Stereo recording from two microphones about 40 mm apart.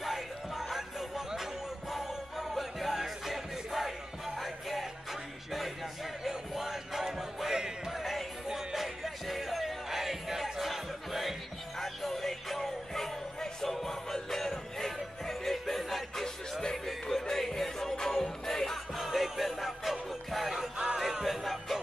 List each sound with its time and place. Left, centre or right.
0.0 s music: centre
6.2 s music: centre
7.9 s music: centre
18.9 s music: centre
20.7 s music: right
21.0 s music: centre